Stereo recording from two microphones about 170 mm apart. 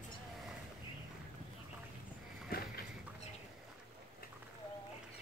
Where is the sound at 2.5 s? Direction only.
60° left (ahead or behind).